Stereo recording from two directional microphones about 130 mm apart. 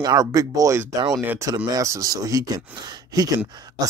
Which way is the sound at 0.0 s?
30° right (ahead or behind).